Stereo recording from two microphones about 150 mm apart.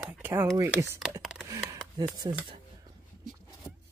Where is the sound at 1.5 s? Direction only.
25° right (ahead or behind).